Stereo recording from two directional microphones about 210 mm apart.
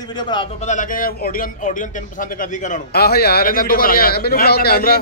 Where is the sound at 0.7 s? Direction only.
40° left (ahead or behind).